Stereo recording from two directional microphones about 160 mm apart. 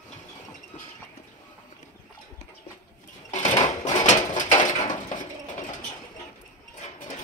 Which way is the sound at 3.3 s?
50° left (ahead or behind).